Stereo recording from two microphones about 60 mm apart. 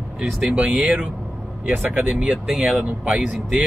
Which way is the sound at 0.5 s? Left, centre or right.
Right.